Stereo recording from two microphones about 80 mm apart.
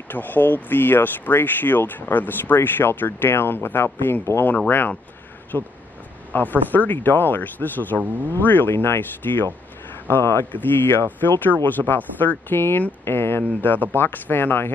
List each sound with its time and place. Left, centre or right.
0.1 s speech: left